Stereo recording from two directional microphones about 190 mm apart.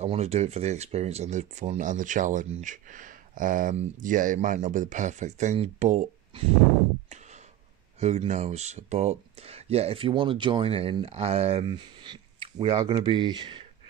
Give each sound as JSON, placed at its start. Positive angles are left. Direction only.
{"t": 0.0, "sound": "speech", "side_deg": -35}
{"t": 8.0, "sound": "speech", "side_deg": -35}